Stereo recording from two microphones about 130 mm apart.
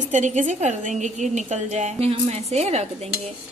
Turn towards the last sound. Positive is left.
turn(degrees=-55)  # may be behind; listen again after turning